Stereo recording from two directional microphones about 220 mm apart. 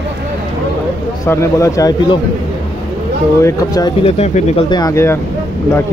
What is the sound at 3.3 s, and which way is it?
Speech, 15° left (ahead or behind).